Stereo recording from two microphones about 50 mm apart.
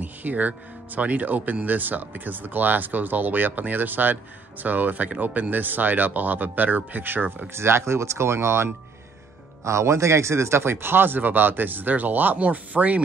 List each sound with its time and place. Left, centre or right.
0.0 s speech: right
7.5 s speech: right
9.7 s speech: right